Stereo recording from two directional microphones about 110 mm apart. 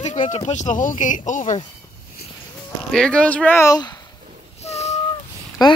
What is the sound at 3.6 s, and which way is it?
Speech, 35° left (ahead or behind).